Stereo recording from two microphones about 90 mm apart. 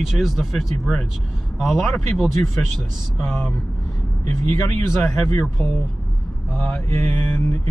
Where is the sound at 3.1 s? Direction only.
25° left (ahead or behind).